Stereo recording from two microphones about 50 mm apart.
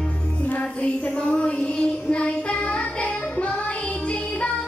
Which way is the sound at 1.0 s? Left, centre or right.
Left.